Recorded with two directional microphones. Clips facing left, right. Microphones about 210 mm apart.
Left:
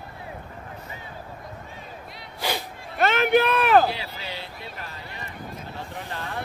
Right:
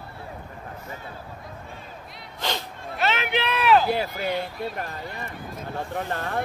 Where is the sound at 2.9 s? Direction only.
50° left (ahead or behind).